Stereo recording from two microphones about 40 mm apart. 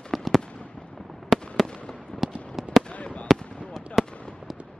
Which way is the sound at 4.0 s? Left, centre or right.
Centre.